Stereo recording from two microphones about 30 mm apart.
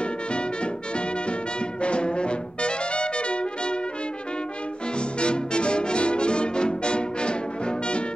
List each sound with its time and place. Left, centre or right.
0.0 s music: left
1.8 s brass instrument: left
4.9 s music: left